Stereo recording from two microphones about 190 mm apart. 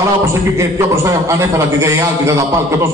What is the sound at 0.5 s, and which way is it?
A man's voice, 15° right (ahead or behind).